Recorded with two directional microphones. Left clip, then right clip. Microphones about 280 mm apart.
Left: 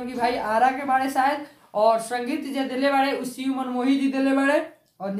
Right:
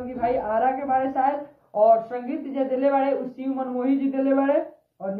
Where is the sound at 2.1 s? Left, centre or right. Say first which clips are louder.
Left 3 dB; left.